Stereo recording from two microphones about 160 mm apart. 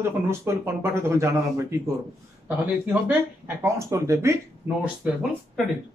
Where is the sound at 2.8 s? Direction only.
10° right (ahead or behind).